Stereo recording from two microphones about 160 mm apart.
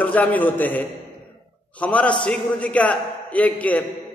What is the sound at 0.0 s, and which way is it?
A man's voice, 10° left (ahead or behind).